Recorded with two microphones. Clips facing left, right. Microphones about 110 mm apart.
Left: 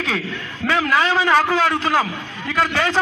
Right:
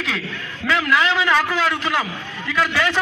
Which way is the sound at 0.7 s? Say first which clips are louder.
Left 1 dB; 30° left (ahead or behind).